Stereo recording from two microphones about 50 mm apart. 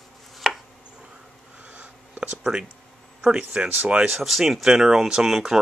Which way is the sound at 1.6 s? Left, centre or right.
Right.